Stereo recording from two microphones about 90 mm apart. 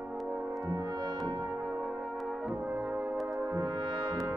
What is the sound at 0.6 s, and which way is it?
Music, 50° right (ahead or behind).